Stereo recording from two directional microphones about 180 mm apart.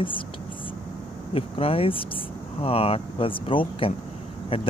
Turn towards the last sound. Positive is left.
turn(degrees=30)  # may be behind; listen again after turning